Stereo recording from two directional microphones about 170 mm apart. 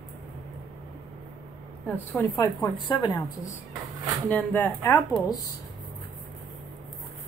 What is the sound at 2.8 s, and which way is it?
A woman's voice, 20° left (ahead or behind).